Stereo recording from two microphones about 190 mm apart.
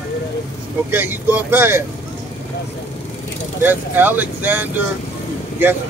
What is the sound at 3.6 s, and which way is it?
Speech, 10° right (ahead or behind).